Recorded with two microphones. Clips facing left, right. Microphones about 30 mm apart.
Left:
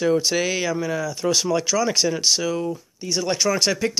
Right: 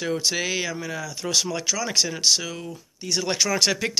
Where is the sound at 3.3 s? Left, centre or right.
Right.